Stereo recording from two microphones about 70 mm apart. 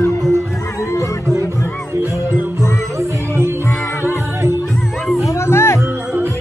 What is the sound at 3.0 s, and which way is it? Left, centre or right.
Music, right.